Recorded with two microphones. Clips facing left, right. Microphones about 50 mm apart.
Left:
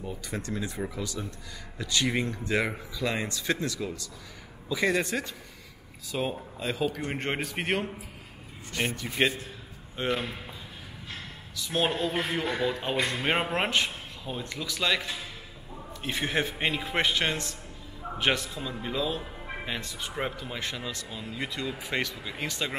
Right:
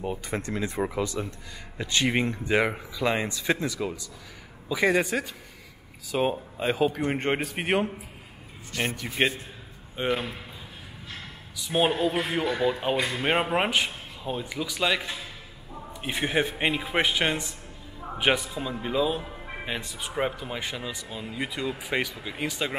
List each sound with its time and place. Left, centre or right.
0.0 s speech: right
0.4 s a man's voice: right; by 3.5 s centre
3.8 s speech: right
4.6 s a man's voice: centre
6.6 s a man's voice: right
7.2 s a man's voice: centre
9.1 s a man's voice: centre
11.5 s a man's voice: centre